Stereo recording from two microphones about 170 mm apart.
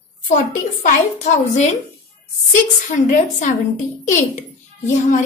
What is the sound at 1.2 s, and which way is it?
Speech, 45° left (ahead or behind).